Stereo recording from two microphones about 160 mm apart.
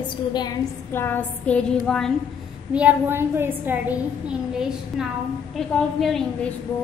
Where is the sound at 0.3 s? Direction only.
25° left (ahead or behind).